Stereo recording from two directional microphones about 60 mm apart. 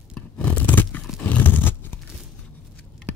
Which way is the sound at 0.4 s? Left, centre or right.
Left.